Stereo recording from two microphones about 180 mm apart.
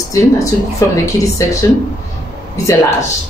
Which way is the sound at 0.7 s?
20° left (ahead or behind).